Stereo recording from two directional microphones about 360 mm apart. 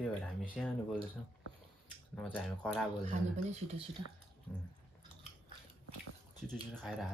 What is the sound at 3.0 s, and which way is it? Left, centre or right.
Speech, centre.